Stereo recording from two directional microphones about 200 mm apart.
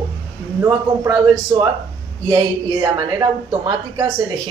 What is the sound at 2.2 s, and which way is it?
Speech, 20° right (ahead or behind).